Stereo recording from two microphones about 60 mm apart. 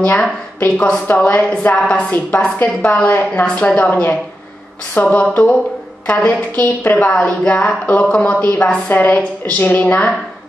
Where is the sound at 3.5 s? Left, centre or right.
Left.